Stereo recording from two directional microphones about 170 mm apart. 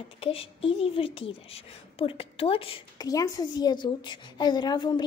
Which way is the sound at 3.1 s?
20° left (ahead or behind).